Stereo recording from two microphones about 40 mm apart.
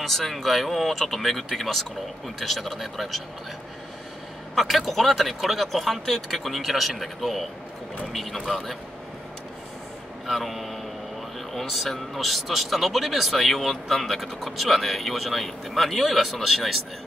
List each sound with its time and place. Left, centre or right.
0.0 s speech: centre
4.6 s a man's voice: centre
10.2 s speech: centre